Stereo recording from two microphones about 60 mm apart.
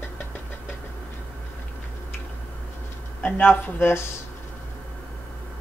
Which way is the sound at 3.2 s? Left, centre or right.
Left.